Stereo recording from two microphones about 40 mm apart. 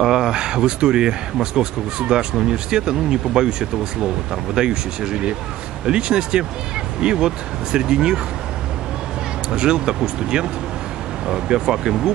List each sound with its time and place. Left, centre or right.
0.0 s speech: centre
9.5 s speech: centre